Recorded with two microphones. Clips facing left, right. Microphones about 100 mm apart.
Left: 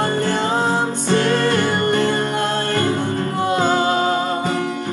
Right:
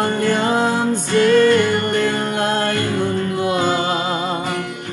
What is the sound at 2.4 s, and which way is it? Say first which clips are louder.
Music: right 2 dB; 40° right (ahead or behind).